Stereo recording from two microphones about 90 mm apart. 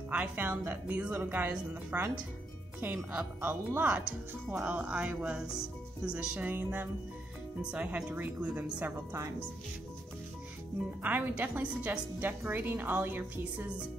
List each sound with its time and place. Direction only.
0.1 s a woman's voice: 15° right (ahead or behind)
11.0 s a woman's voice: 20° right (ahead or behind)